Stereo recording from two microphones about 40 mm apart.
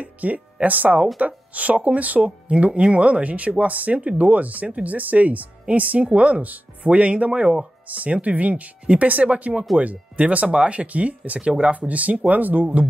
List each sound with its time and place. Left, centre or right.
0.0 s speech: right